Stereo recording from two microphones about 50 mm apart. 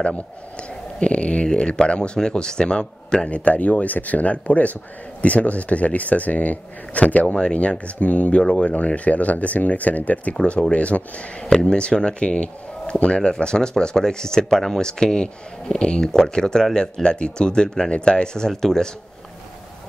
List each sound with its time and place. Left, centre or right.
0.0 s speech: centre
3.3 s speech: left
10.3 s speech: centre